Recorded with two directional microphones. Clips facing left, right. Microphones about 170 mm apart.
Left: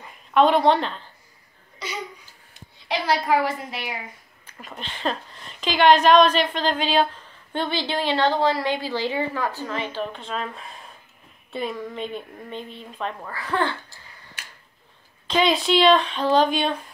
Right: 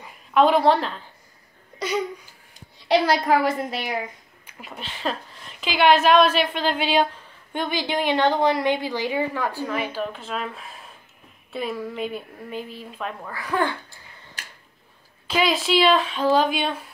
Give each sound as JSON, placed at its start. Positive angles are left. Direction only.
{"t": 0.0, "sound": "a woman's voice", "side_deg": -5}
{"t": 2.9, "sound": "a woman's voice", "side_deg": -40}
{"t": 4.5, "sound": "a woman's voice", "side_deg": -10}
{"t": 15.2, "sound": "a woman's voice", "side_deg": -5}